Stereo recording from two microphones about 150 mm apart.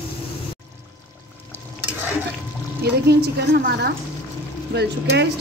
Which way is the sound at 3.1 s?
90° right.